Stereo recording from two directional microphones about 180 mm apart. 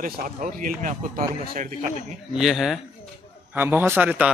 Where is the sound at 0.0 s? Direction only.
50° right (ahead or behind).